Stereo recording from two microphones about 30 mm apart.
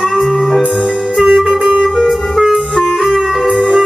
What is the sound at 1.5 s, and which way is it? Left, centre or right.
Music, right.